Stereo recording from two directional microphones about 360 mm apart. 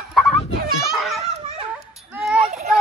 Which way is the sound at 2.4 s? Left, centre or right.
Centre.